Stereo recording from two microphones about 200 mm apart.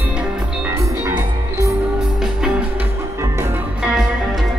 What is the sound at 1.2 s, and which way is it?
Music, 15° right (ahead or behind).